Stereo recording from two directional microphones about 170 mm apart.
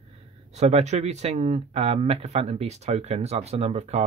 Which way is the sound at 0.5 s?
40° right (ahead or behind).